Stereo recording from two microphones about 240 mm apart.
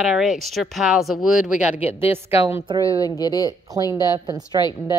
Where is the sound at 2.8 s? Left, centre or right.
Centre.